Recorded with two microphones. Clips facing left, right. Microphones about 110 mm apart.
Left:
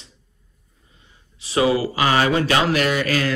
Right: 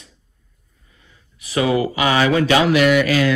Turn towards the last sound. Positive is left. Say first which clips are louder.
# right 6 dB
turn(degrees=40)  # may be behind; listen again after turning